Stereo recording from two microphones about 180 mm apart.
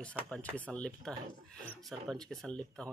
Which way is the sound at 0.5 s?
5° left (ahead or behind).